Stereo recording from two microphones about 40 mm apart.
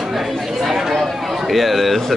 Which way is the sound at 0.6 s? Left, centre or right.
Centre.